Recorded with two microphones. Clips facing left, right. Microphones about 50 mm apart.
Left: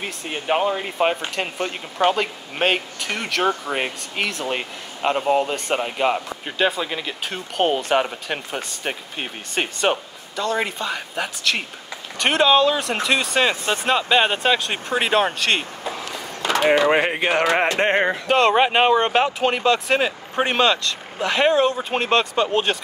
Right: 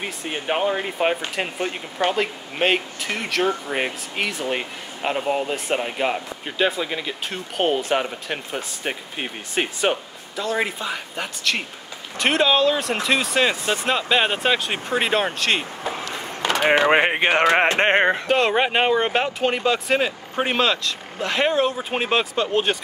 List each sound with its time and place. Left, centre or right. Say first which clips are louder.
0.0 s speech: even; centre
15.8 s a sound: right 1 dB; right
16.6 s speech: even; right
18.2 s speech: left 3 dB; centre